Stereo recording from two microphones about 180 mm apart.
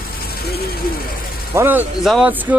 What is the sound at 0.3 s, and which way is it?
Speech, 60° left (ahead or behind).